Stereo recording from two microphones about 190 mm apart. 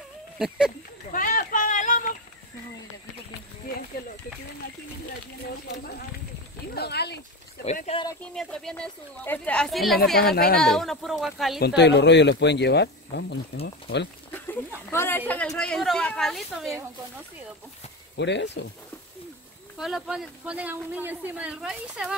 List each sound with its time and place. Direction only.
1.1 s a sound: 45° left (ahead or behind)
6.7 s speech: 60° left (ahead or behind)
7.6 s speech: 35° left (ahead or behind)
8.4 s a man's voice: 5° left (ahead or behind)
10.1 s a woman's voice: 55° left (ahead or behind)
10.6 s a man's voice: centre (ahead or behind)
11.6 s speech: 65° left (ahead or behind)
14.9 s a man's voice: 10° left (ahead or behind)
18.1 s speech: 65° left (ahead or behind)
19.8 s a man's voice: centre (ahead or behind)